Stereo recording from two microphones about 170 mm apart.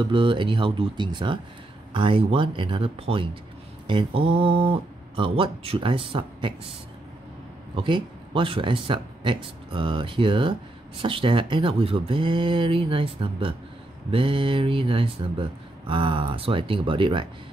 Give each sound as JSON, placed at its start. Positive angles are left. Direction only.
{"t": 0.0, "sound": "speech", "side_deg": -30}
{"t": 7.7, "sound": "speech", "side_deg": -30}